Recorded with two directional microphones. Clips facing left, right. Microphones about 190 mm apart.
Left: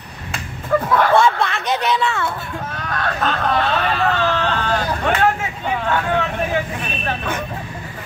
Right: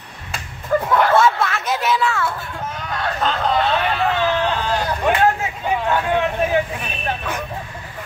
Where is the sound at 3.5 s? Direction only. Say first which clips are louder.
Even; 10° right (ahead or behind).